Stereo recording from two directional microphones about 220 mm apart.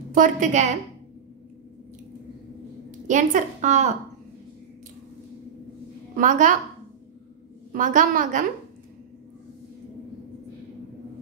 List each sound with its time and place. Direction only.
0.1 s a woman's voice: 35° right (ahead or behind)
3.1 s a woman's voice: 35° right (ahead or behind)
6.1 s a woman's voice: 35° right (ahead or behind)
7.7 s a woman's voice: 35° right (ahead or behind)